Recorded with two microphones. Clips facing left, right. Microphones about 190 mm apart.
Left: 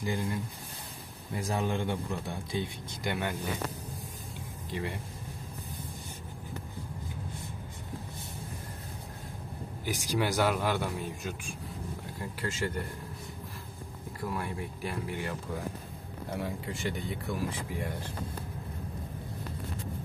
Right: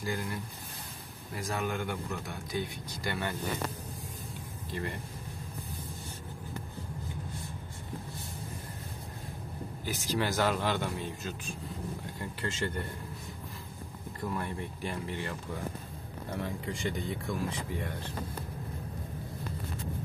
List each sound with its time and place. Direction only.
0.0 s speech: 20° left (ahead or behind)
1.3 s speech: 30° left (ahead or behind)
3.0 s a man's voice: 15° left (ahead or behind)
4.6 s speech: 15° left (ahead or behind)
9.8 s a man's voice: 15° left (ahead or behind)
14.3 s a man's voice: 5° left (ahead or behind)
16.3 s speech: 5° left (ahead or behind)